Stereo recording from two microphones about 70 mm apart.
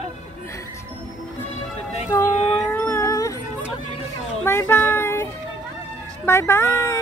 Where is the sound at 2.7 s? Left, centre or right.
Left.